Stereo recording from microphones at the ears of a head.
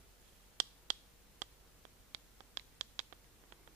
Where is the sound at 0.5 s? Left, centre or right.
Right.